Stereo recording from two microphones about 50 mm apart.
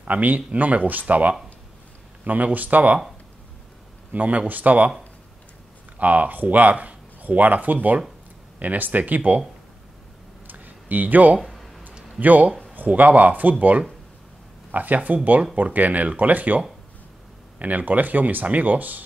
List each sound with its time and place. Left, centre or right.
0.0 s speech: right
4.1 s speech: right
5.9 s speech: right
10.4 s a sound: right
11.3 s a sound: centre
12.2 s speech: right